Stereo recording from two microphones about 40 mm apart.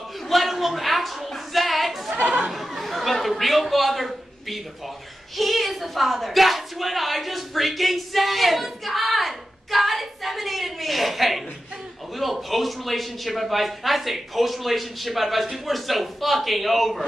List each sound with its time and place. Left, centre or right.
0.3 s a woman's voice: centre
2.2 s speech: right
2.5 s a man's voice: centre